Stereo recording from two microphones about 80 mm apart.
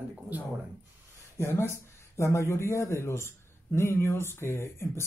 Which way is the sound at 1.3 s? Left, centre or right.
Left.